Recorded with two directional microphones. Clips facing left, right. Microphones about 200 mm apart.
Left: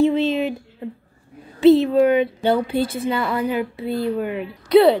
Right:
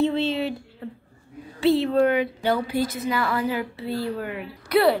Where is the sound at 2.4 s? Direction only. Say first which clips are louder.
Left 4 dB; 25° left (ahead or behind).